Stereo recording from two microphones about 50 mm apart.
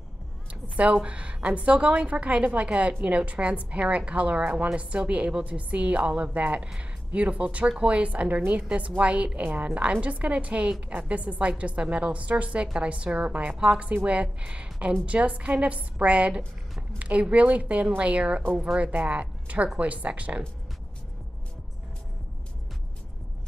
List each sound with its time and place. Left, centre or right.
1.0 s a woman's voice: right
7.6 s speech: centre
7.9 s a woman's voice: right